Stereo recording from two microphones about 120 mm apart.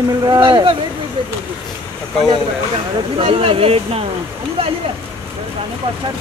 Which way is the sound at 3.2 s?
50° right (ahead or behind).